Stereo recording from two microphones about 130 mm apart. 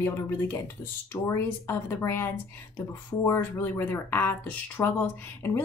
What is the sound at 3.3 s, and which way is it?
Speech, 20° left (ahead or behind).